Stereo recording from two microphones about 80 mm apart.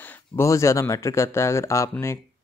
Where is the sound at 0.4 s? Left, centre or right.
Left.